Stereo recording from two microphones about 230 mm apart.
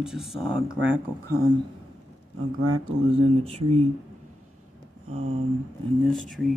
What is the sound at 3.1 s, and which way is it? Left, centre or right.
Speech, right.